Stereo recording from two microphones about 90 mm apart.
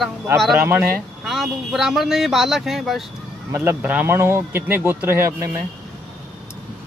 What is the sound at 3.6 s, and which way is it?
Speech, 20° right (ahead or behind).